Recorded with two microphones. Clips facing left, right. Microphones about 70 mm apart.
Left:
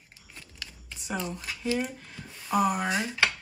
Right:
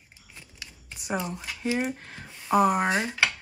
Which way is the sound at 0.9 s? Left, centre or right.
Centre.